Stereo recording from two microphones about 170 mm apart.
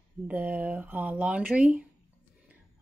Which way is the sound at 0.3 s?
10° right (ahead or behind).